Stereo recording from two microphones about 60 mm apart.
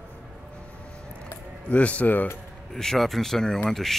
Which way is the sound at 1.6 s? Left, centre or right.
Left.